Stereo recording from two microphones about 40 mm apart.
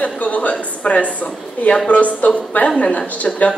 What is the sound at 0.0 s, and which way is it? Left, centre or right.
A woman's voice, left.